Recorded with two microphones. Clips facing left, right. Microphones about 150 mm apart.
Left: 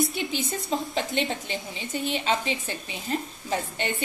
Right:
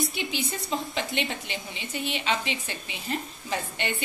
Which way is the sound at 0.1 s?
45° left (ahead or behind).